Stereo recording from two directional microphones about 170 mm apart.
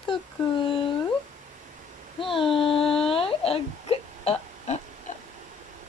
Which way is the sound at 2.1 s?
30° left (ahead or behind).